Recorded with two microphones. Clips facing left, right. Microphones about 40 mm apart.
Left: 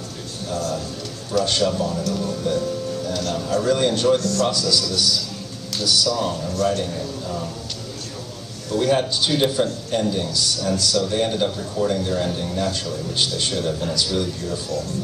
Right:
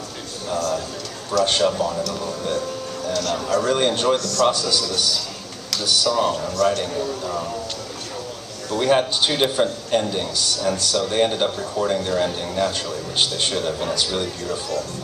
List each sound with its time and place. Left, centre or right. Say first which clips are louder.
1.4 s a man's voice: right 3 dB; right
1.7 s speech: even; right
3.2 s a man's voice: right 3 dB; right
4.2 s a man's voice: right 1 dB; right
4.5 s a man's voice: right 1 dB; right
6.5 s a man's voice: even; right
6.8 s a man's voice: right 2 dB; right
8.7 s speech: right 1 dB; right
13.1 s a man's voice: right 2 dB; right